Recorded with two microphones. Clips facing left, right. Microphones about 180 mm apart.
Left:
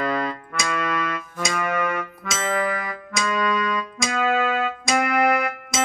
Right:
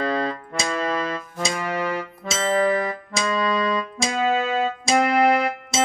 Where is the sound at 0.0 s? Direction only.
30° right (ahead or behind).